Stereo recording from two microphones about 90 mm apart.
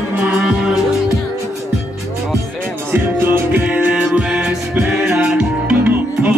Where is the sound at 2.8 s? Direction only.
25° right (ahead or behind).